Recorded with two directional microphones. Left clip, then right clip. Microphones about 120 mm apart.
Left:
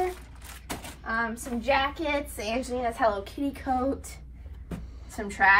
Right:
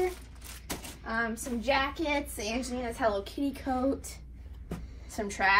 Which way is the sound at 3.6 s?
25° left (ahead or behind).